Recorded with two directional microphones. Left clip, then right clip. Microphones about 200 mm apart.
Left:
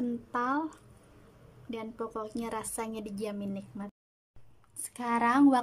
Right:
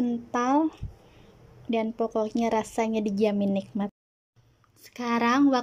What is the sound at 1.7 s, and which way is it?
A woman's voice, 15° right (ahead or behind).